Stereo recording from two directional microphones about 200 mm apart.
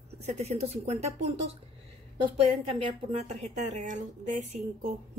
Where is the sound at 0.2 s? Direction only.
35° right (ahead or behind).